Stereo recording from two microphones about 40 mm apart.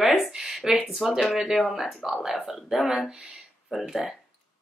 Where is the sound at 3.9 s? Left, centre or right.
Centre.